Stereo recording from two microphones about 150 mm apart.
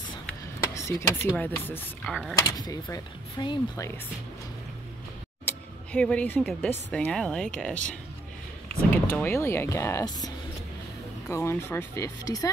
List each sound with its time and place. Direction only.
0.7 s speech: 20° left (ahead or behind)
2.4 s speech: 25° left (ahead or behind)
5.4 s speech: 10° left (ahead or behind)
8.9 s speech: 15° left (ahead or behind)